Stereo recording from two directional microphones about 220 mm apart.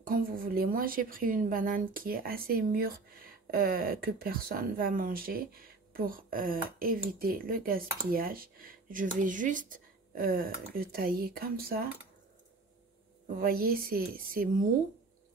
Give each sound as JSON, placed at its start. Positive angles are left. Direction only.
{"t": 0.0, "sound": "speech", "side_deg": -40}
{"t": 13.4, "sound": "speech", "side_deg": -40}